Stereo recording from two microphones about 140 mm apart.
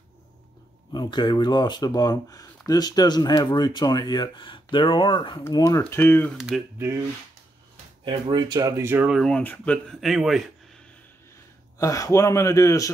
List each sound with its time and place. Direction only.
0.9 s speech: 30° left (ahead or behind); by 6.3 s 15° left (ahead or behind)
6.3 s speech: centre (ahead or behind)
8.0 s speech: 30° right (ahead or behind)
9.1 s speech: centre (ahead or behind)
11.8 s speech: 25° left (ahead or behind)